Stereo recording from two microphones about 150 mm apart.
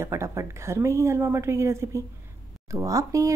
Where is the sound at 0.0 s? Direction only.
20° right (ahead or behind).